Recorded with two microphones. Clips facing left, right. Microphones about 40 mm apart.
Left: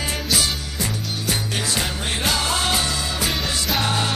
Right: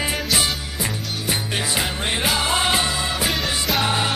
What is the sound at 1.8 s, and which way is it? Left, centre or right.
Music, centre.